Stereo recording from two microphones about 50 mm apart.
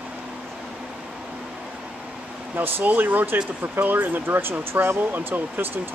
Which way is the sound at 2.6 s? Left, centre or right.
Right.